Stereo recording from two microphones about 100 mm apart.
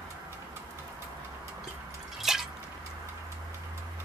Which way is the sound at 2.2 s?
5° right (ahead or behind).